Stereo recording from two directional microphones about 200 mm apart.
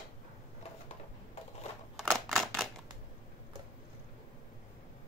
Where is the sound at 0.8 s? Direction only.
30° left (ahead or behind).